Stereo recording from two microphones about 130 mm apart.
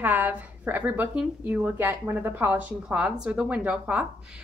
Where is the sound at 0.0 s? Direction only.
15° right (ahead or behind).